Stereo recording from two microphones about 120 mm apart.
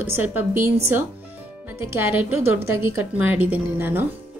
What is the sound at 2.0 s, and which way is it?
Speech, 15° right (ahead or behind).